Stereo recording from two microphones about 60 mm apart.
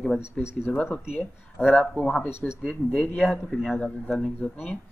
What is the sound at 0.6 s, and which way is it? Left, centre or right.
Speech, left.